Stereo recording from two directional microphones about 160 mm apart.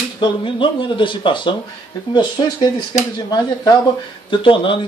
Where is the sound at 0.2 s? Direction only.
30° left (ahead or behind).